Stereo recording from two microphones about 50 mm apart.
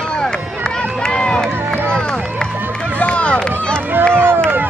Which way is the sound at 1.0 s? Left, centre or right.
Centre.